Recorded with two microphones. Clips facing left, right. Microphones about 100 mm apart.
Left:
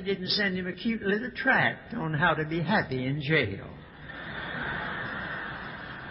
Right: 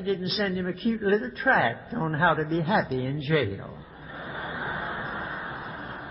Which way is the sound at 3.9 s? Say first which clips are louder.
Right 3 dB; 30° right (ahead or behind).